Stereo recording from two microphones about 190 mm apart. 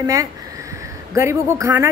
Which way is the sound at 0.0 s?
15° right (ahead or behind).